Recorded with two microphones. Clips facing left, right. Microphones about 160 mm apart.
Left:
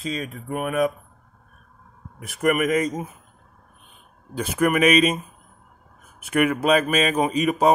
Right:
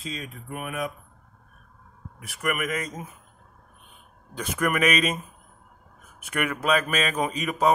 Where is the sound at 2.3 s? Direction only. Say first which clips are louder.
Left 8 dB; 40° left (ahead or behind).